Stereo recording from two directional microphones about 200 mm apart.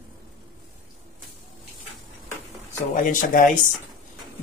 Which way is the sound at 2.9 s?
40° left (ahead or behind).